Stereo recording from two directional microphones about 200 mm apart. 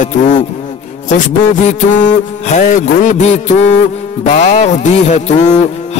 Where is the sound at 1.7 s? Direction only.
35° left (ahead or behind).